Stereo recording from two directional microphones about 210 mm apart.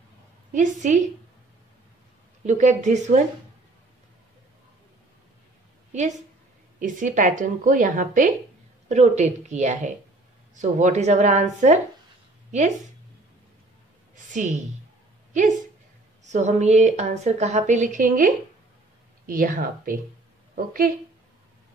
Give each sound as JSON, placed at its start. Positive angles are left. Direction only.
{"t": 0.5, "sound": "a woman's voice", "side_deg": -35}
{"t": 2.4, "sound": "a woman's voice", "side_deg": -35}
{"t": 6.8, "sound": "a woman's voice", "side_deg": -40}
{"t": 14.1, "sound": "a woman's voice", "side_deg": -35}
{"t": 16.3, "sound": "a woman's voice", "side_deg": -35}